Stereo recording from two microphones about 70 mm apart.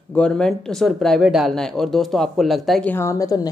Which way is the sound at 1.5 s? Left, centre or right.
Centre.